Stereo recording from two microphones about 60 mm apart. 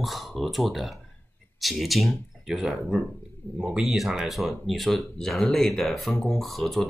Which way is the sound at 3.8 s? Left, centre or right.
Centre.